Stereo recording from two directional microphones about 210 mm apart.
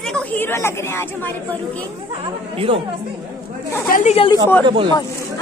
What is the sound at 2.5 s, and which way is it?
Speech, 25° right (ahead or behind).